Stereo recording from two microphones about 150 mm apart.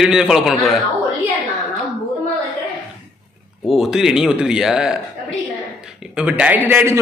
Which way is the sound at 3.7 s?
Centre (ahead or behind).